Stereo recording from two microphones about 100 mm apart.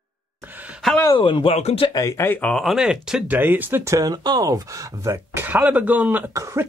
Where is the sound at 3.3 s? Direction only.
20° right (ahead or behind).